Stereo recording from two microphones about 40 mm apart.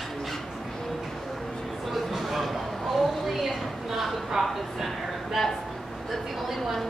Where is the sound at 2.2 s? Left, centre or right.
Centre.